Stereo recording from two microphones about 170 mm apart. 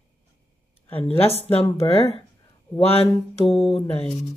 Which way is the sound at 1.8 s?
35° left (ahead or behind).